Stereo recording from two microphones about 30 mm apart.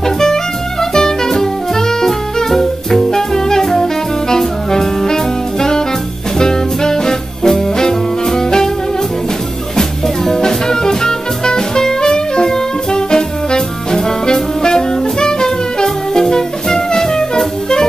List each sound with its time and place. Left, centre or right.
0.0 s music: centre
6.3 s jazz: left
8.3 s music: centre
10.0 s music: centre
10.4 s music: left